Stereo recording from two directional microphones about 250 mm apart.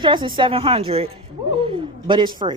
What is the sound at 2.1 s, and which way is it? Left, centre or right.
Speech, centre.